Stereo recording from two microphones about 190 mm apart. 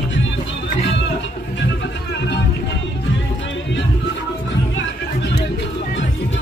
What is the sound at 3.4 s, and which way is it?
Music, 75° left (ahead or behind).